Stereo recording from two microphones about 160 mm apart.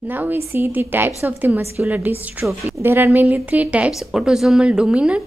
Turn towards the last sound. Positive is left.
turn(degrees=-5)  # may be behind; listen again after turning